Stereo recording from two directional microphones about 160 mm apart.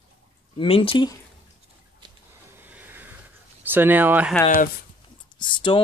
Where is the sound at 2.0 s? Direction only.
30° right (ahead or behind).